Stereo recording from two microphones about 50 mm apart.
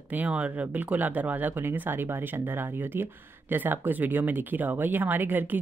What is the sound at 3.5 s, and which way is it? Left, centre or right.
Speech, right.